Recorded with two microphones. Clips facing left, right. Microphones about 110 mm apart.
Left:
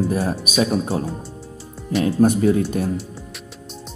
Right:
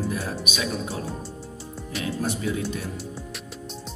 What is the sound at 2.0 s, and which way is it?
Speech, 45° left (ahead or behind).